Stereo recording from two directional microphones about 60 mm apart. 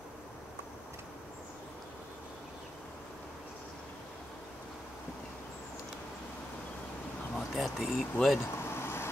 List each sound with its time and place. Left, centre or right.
7.3 s speech: centre
8.5 s vehicle: left